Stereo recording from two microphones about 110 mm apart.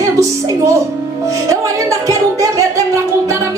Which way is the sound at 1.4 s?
30° right (ahead or behind).